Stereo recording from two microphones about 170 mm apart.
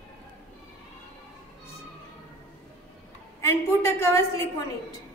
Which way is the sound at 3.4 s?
15° left (ahead or behind).